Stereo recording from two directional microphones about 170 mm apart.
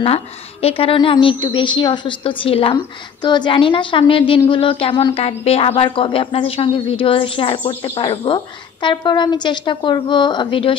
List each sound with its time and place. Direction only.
0.0 s a woman's voice: 35° left (ahead or behind)